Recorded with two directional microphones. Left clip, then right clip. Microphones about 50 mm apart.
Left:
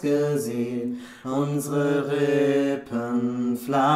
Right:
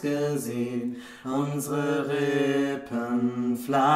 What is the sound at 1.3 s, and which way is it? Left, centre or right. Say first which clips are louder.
Mantra: left 3 dB; centre.